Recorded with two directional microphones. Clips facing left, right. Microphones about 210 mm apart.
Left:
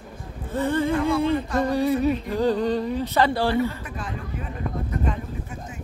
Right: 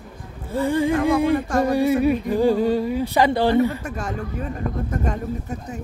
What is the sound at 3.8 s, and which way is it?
Speech, 45° right (ahead or behind).